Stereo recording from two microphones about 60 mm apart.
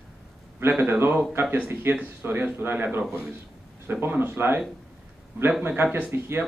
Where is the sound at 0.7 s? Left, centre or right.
Right.